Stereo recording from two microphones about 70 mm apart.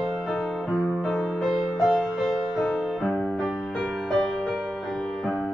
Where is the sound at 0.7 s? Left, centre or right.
Centre.